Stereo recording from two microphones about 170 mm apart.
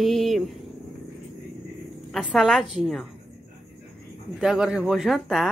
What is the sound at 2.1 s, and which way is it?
A woman's voice, centre (ahead or behind).